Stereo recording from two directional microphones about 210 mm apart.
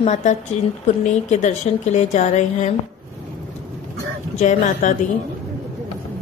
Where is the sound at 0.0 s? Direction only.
35° left (ahead or behind).